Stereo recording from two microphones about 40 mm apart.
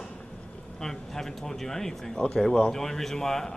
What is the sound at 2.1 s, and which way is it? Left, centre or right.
Speech, left.